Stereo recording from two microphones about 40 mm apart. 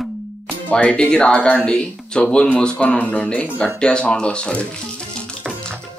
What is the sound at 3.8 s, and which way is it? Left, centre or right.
Speech, left.